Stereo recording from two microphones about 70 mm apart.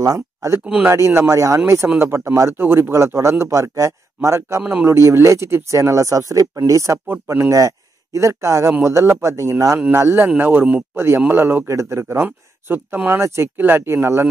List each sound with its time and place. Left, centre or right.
0.0 s a sound: right
0.7 s speech: right
0.9 s speech: right
9.8 s speech: right
12.0 s speech: right